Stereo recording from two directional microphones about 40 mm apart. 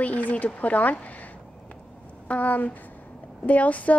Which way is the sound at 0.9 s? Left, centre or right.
Left.